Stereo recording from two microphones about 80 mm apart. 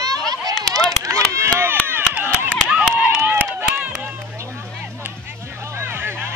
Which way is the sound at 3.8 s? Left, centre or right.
Right.